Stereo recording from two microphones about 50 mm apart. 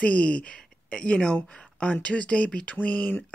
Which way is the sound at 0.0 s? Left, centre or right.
Left.